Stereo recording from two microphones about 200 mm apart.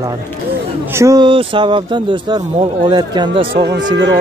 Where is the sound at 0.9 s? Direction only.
15° right (ahead or behind).